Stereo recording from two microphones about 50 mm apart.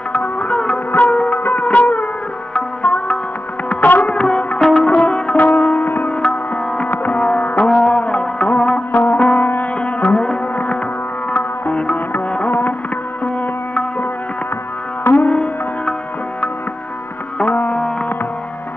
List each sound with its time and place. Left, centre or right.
0.1 s music: left
2.5 s tabla: left
3.6 s music: left
12.4 s music: left
15.0 s music: left
17.4 s music: left